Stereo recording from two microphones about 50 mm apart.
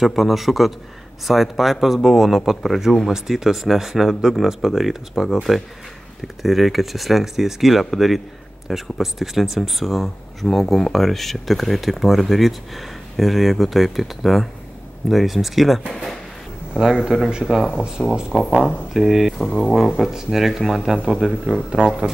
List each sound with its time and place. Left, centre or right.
0.0 s speech: centre
16.8 s speech: centre
17.3 s speech: centre
18.0 s speech: centre
19.3 s speech: centre
20.0 s speech: centre
22.0 s speech: centre